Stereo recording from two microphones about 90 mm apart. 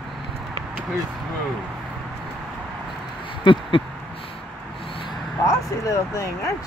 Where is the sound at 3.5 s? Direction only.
65° left (ahead or behind).